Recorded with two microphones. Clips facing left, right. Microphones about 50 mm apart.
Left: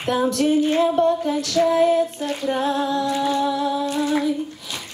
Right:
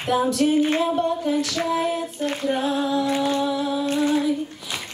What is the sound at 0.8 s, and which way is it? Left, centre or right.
Female singing, centre.